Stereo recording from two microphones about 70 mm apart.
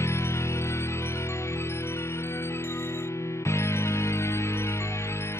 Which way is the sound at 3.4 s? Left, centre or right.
Left.